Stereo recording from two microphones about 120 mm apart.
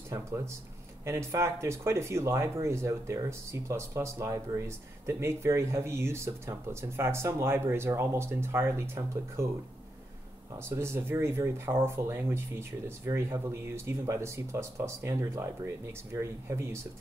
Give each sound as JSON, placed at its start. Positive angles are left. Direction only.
{"t": 0.1, "sound": "speech", "side_deg": -25}
{"t": 10.6, "sound": "speech", "side_deg": -20}